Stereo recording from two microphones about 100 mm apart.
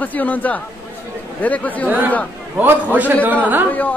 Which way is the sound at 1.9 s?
15° right (ahead or behind).